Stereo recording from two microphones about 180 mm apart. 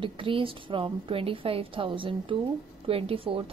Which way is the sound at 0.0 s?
30° right (ahead or behind).